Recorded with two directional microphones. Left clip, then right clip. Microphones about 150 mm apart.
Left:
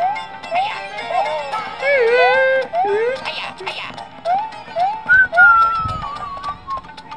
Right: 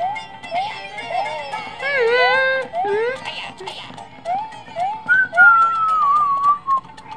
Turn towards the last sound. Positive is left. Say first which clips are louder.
# right 10 dB
turn(degrees=-10)  # may be behind; listen again after turning